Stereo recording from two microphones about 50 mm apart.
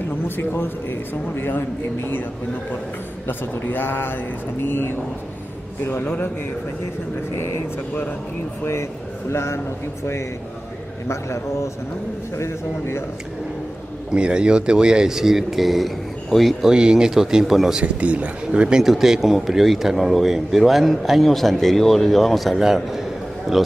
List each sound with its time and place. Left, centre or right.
0.4 s speech: left
3.3 s speech: left
7.3 s a man's voice: left
9.3 s a man's voice: left
11.1 s a man's voice: left
12.4 s a man's voice: left
14.1 s speech: centre
16.3 s speech: centre
16.6 s speech: centre
17.8 s speech: right
18.8 s a man's voice: centre